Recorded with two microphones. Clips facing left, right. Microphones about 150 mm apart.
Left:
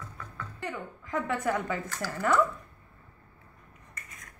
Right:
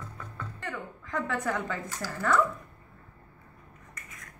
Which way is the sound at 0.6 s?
10° left (ahead or behind).